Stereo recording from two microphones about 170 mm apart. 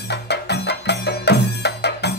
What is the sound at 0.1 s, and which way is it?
Music, 85° left.